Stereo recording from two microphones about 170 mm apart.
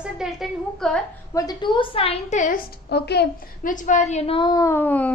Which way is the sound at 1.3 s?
20° left (ahead or behind).